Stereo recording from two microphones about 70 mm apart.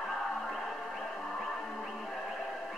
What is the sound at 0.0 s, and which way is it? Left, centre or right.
Music, centre.